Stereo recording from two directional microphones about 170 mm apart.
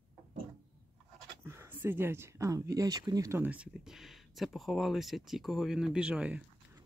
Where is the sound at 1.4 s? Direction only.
15° right (ahead or behind).